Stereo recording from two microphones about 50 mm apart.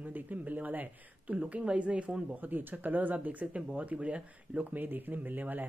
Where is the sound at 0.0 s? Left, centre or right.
Right.